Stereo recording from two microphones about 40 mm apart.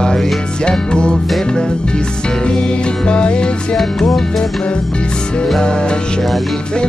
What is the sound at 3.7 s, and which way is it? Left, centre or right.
Music, centre.